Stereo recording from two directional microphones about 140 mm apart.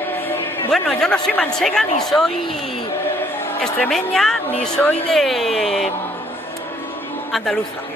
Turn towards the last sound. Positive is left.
turn(degrees=0)  # may be behind; listen again after turning